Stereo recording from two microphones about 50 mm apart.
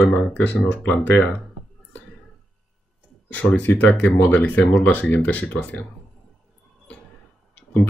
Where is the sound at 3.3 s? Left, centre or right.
Left.